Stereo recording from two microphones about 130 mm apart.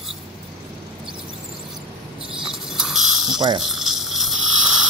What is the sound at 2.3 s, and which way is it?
Cricket, 5° right (ahead or behind).